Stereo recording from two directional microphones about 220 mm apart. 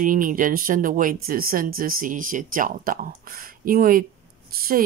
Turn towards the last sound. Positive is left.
turn(degrees=-40)  # may be behind; listen again after turning